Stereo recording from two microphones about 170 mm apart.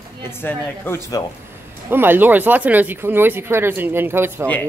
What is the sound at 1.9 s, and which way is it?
A woman's voice, 10° right (ahead or behind).